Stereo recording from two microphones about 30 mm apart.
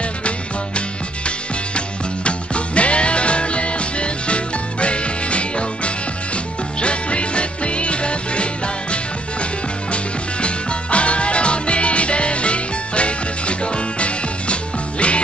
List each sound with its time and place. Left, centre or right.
2.2 s music: left